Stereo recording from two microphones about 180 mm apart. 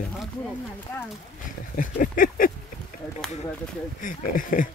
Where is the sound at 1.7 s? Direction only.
50° left (ahead or behind).